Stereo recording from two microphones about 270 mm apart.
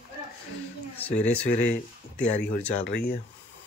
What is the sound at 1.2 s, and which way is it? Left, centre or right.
Speech, centre.